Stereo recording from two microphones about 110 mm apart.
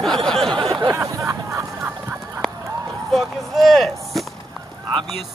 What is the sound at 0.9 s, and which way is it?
Snicker, 25° right (ahead or behind).